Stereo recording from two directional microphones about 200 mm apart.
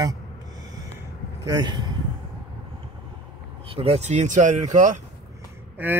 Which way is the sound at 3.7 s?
30° right (ahead or behind).